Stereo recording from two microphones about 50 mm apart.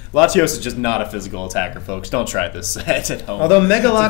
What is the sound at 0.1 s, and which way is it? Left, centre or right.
Speech, centre.